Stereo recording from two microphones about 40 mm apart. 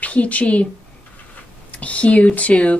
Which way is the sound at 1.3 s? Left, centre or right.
Left.